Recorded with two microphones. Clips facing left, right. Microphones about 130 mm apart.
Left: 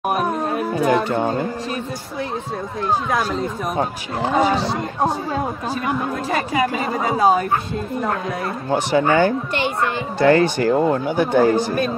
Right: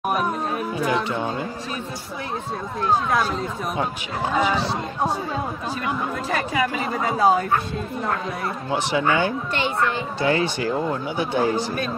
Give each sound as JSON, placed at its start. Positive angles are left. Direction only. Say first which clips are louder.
{"t": 0.2, "sound": "music", "louder": "left 3 dB", "side_deg": 50}
{"t": 6.5, "sound": "speech", "louder": "left 3 dB", "side_deg": 35}
{"t": 8.6, "sound": "speech", "louder": "left 5 dB", "side_deg": 45}